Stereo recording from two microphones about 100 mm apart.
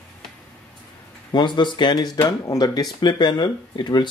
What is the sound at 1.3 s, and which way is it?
Speech, 50° left (ahead or behind).